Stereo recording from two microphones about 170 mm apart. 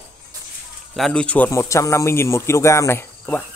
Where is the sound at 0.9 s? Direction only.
5° left (ahead or behind).